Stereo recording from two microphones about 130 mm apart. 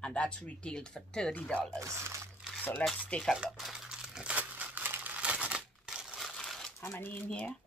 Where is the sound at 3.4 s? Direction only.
5° right (ahead or behind).